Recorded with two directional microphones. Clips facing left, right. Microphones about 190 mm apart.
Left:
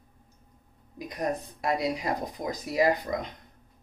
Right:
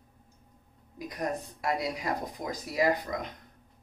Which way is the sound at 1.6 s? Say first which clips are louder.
Left 3 dB; 25° left (ahead or behind).